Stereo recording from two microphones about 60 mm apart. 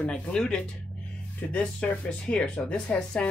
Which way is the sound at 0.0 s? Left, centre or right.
Centre.